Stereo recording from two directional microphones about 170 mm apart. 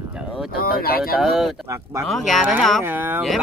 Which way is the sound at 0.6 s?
60° left (ahead or behind).